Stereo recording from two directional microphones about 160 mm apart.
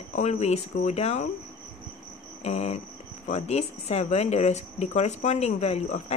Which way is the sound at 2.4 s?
45° left (ahead or behind).